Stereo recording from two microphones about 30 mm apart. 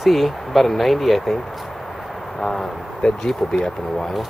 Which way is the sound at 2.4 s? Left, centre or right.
Centre.